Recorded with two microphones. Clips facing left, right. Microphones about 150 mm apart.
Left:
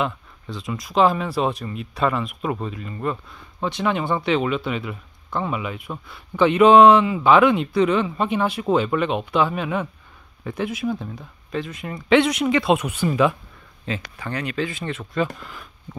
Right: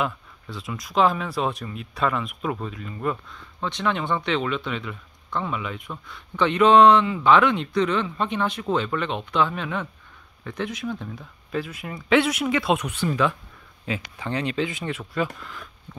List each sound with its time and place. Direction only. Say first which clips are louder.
0.0 s speech: left 2 dB; centre (ahead or behind)
3.6 s speech: left 3 dB; 10° left (ahead or behind)
11.5 s speech: left 1 dB; 5° right (ahead or behind)
13.8 s speech: even; 15° right (ahead or behind)